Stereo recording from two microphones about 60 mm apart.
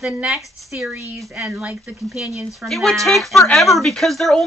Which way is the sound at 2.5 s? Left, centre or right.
Centre.